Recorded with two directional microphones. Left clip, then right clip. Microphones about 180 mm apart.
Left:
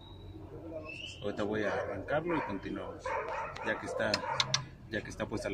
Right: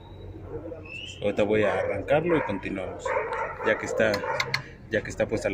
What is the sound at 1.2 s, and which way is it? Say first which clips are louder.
A man's voice: right 11 dB; 25° right (ahead or behind).